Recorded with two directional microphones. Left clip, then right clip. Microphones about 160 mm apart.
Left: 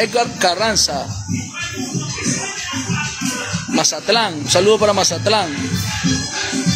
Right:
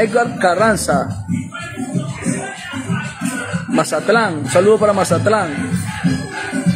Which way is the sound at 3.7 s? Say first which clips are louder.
Right 2 dB; centre (ahead or behind).